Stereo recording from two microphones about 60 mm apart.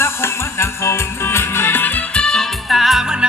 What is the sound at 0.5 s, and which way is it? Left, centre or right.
Music, left.